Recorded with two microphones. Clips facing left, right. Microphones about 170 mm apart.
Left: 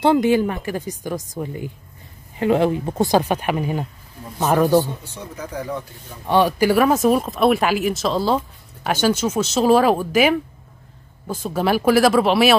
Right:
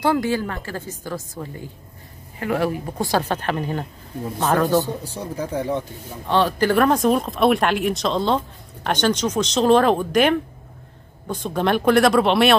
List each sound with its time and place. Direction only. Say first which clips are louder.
0.0 s a woman's voice: left 5 dB; 20° left (ahead or behind)
5.0 s speech: right 5 dB; 35° right (ahead or behind)
6.2 s a woman's voice: left 2 dB; 10° left (ahead or behind)